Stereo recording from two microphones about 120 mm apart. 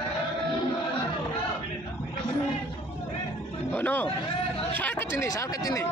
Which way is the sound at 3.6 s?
20° left (ahead or behind).